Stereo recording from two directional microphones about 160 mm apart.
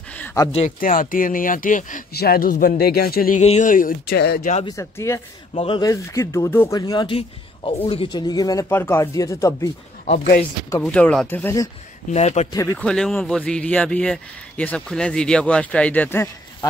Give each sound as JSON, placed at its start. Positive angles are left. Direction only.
{"t": 0.2, "sound": "a sound", "side_deg": 15}
{"t": 0.5, "sound": "speech", "side_deg": 40}
{"t": 0.7, "sound": "speech", "side_deg": 60}
{"t": 2.1, "sound": "speech", "side_deg": 70}
{"t": 3.3, "sound": "speech", "side_deg": 45}
{"t": 4.6, "sound": "speech", "side_deg": 15}
{"t": 5.5, "sound": "speech", "side_deg": 40}
{"t": 5.8, "sound": "speech", "side_deg": 20}
{"t": 6.8, "sound": "speech", "side_deg": 25}
{"t": 10.8, "sound": "speech", "side_deg": 5}
{"t": 12.1, "sound": "a man's voice", "side_deg": 45}
{"t": 12.7, "sound": "speech", "side_deg": 5}